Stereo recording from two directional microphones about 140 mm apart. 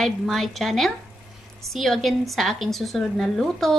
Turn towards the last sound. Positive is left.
turn(degrees=0)  # may be behind; listen again after turning